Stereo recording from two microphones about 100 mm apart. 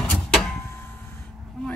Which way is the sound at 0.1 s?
5° left (ahead or behind).